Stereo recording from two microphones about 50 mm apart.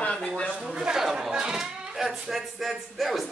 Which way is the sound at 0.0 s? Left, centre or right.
Left.